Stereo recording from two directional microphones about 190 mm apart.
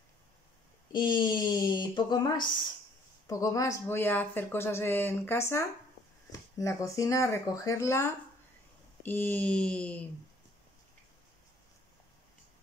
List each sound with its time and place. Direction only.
0.9 s speech: 25° left (ahead or behind); by 10.0 s 5° left (ahead or behind)